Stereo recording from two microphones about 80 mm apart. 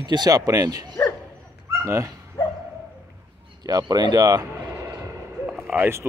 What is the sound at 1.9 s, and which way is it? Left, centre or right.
Speech, right.